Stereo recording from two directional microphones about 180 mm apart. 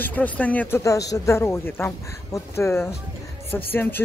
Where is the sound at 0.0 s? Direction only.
10° left (ahead or behind).